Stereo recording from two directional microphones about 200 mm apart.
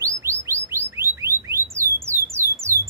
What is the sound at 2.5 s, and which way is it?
Squawk, 15° right (ahead or behind).